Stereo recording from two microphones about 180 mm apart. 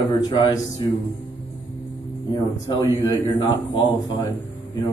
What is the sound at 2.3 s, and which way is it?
Speech, 20° left (ahead or behind).